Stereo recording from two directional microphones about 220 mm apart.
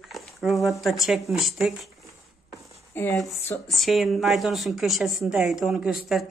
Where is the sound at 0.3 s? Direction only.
Centre (ahead or behind).